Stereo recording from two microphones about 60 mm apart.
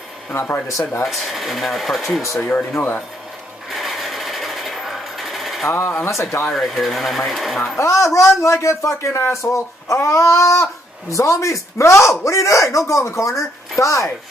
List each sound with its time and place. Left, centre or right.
0.3 s speech: left
1.0 s speech: centre
2.7 s speech: left
3.7 s sewing machine: centre
5.7 s speech: left
6.0 s speech: left
6.5 s speech: centre
7.8 s speech: left